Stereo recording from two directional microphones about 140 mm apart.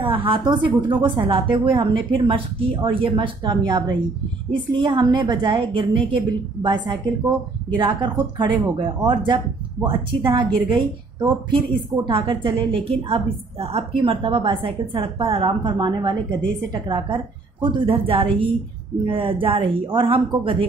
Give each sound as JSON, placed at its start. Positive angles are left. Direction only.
{"t": 0.0, "sound": "a woman's voice", "side_deg": -40}